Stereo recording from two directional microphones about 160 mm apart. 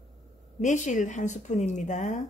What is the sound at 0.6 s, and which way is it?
Speech, 50° left (ahead or behind).